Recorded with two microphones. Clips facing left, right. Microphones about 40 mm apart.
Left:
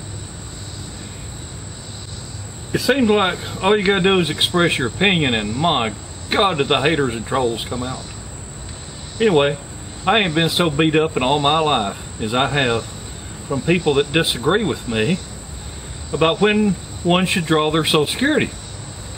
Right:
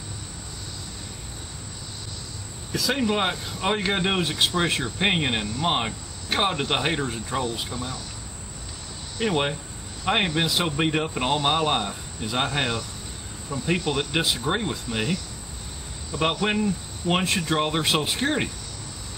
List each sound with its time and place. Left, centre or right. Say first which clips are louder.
2.7 s speech: left 8 dB; left
9.2 s speech: left 9 dB; left